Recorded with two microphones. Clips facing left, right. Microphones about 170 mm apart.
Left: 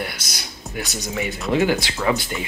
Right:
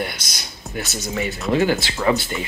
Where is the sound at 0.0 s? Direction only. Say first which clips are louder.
Right 2 dB; 10° left (ahead or behind).